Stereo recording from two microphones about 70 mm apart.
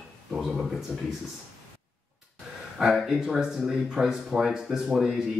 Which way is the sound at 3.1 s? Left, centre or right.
Centre.